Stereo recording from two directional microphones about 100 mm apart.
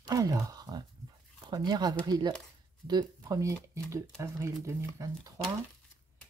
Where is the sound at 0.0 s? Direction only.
35° right (ahead or behind).